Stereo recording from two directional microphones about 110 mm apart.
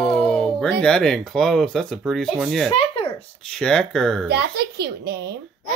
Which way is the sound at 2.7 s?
55° left (ahead or behind).